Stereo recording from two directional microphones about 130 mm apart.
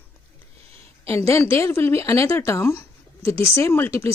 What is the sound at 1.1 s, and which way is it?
A woman's voice, 20° left (ahead or behind).